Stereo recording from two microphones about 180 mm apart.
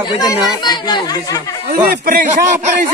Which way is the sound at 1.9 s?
50° right (ahead or behind).